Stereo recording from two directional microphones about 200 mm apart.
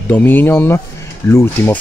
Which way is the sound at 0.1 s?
10° left (ahead or behind).